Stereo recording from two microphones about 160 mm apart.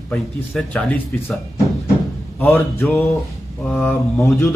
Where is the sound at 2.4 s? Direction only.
10° left (ahead or behind).